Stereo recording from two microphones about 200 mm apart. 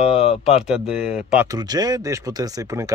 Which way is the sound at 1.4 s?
20° right (ahead or behind).